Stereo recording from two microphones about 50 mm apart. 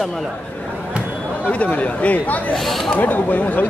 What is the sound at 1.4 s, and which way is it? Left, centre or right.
Speech, left.